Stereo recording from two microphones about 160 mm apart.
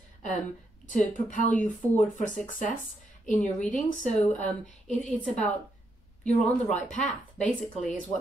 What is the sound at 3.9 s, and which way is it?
Speech, 50° left (ahead or behind).